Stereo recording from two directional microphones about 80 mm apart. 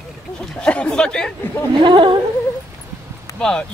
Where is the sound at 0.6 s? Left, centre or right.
Centre.